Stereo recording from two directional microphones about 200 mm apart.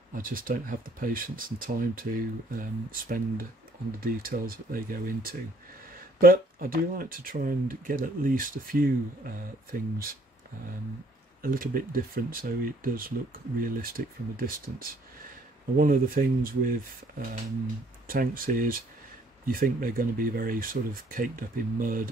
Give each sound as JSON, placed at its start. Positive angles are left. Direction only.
{"t": 0.1, "sound": "speech", "side_deg": -45}
{"t": 11.4, "sound": "speech", "side_deg": -45}
{"t": 18.0, "sound": "speech", "side_deg": -45}